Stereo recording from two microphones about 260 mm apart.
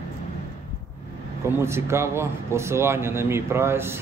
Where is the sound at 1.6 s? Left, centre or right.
Centre.